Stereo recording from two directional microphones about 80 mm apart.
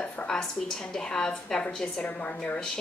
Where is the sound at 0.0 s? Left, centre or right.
Centre.